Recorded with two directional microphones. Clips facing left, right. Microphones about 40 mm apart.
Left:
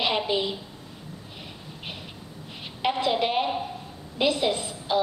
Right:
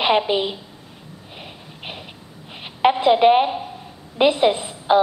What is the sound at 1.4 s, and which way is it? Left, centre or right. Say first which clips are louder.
Snort: right 5 dB; right.